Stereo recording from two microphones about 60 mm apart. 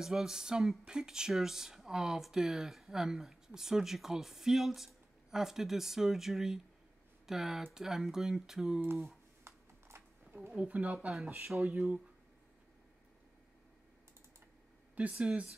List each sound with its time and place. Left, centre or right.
0.0 s speech: centre
9.4 s a sound: right
10.5 s speech: right
11.2 s speech: right
11.5 s speech: centre
15.0 s speech: right